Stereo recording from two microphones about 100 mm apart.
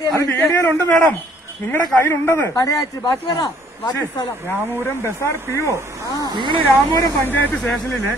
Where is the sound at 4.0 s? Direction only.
25° left (ahead or behind).